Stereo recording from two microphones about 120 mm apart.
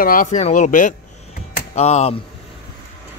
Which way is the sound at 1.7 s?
65° left (ahead or behind).